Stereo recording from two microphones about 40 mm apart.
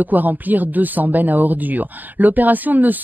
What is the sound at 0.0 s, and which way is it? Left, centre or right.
Speech, right.